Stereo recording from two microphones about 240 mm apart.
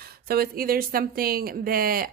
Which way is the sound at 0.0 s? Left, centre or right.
Right.